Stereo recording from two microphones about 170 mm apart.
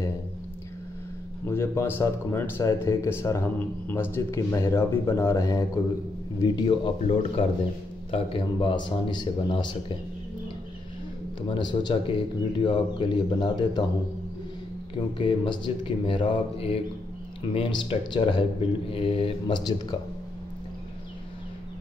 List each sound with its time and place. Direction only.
1.4 s speech: 15° left (ahead or behind)
11.4 s speech: 30° left (ahead or behind)
15.0 s speech: 30° left (ahead or behind)